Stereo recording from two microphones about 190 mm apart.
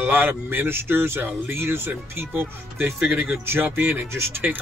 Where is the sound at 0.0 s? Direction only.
10° right (ahead or behind).